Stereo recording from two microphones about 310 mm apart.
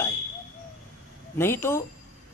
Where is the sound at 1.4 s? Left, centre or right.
Centre.